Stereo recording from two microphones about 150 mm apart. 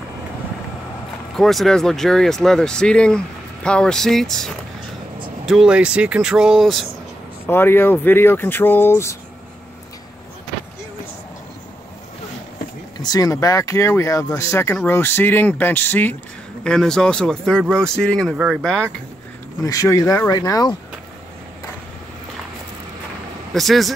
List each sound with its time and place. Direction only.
1.3 s speech: centre (ahead or behind)
7.4 s speech: 15° left (ahead or behind)
13.0 s speech: 25° left (ahead or behind); by 18.9 s 5° left (ahead or behind)
19.6 s speech: 20° left (ahead or behind)
23.5 s speech: centre (ahead or behind)